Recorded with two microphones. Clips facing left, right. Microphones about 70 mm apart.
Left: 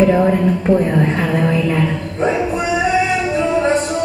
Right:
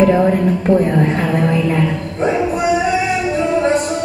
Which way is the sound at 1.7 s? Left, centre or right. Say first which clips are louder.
Right 1 dB; centre.